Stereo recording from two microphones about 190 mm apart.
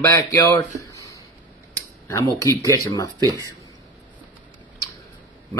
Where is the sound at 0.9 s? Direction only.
15° left (ahead or behind).